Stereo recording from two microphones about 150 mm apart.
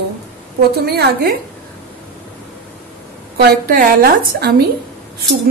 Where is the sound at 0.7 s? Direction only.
90° right.